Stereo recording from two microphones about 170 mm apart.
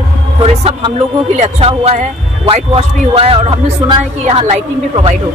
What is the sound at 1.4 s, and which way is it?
Speech, 40° right (ahead or behind).